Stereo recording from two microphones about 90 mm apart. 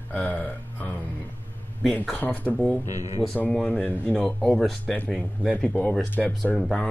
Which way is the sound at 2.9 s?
40° right (ahead or behind).